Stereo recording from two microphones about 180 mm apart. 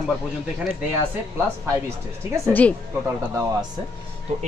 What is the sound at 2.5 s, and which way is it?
Speech, 10° left (ahead or behind).